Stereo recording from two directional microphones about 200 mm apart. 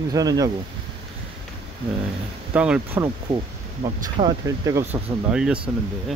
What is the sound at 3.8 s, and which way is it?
Speech, 20° right (ahead or behind).